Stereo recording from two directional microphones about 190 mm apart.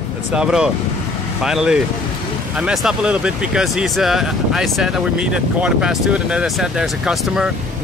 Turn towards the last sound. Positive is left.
turn(degrees=-5)  # may be behind; listen again after turning